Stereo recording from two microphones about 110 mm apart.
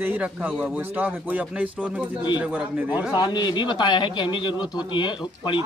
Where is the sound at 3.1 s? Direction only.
40° left (ahead or behind).